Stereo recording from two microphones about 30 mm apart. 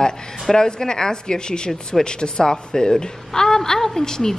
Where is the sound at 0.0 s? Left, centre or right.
Left.